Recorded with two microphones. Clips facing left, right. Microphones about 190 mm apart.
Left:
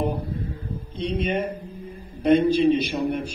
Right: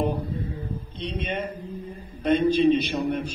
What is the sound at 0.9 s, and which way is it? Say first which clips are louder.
A man's voice: left 6 dB; 10° left (ahead or behind).